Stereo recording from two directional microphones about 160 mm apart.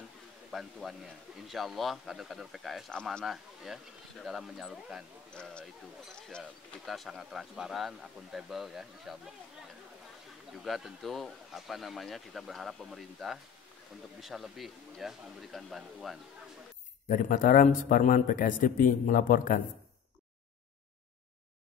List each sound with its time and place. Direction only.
0.5 s a man's voice: centre (ahead or behind)
6.9 s a man's voice: centre (ahead or behind)
10.6 s a man's voice: centre (ahead or behind)
17.1 s a man's voice: 55° left (ahead or behind)